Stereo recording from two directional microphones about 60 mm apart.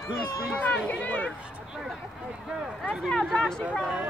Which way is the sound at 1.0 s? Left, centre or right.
Left.